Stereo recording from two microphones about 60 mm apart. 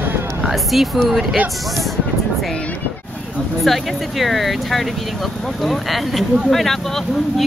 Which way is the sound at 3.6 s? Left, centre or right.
Centre.